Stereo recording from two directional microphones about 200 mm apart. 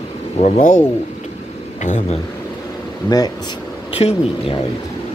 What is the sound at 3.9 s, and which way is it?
Speech, 30° left (ahead or behind).